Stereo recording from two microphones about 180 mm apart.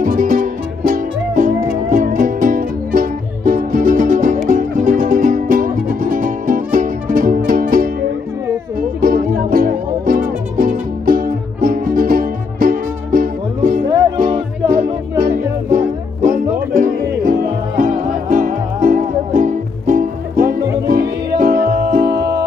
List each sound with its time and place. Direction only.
0.0 s music: 50° right (ahead or behind)
17.1 s music: 55° right (ahead or behind)